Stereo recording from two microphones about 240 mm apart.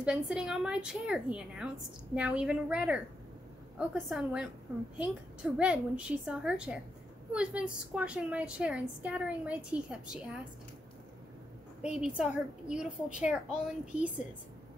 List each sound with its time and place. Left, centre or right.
0.0 s a woman's voice: centre
11.8 s a woman's voice: centre